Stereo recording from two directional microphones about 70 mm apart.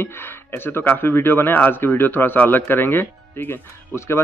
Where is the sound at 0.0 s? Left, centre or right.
Left.